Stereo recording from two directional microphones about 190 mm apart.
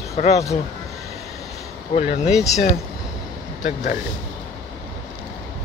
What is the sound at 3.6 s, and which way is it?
Speech, 45° left (ahead or behind).